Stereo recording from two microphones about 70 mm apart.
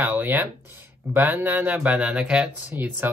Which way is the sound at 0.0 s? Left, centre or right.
Right.